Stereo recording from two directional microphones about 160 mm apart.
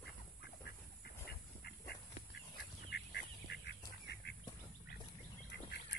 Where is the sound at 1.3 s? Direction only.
90° left.